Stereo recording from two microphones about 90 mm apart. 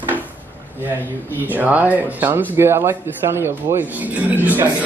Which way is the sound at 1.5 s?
15° right (ahead or behind).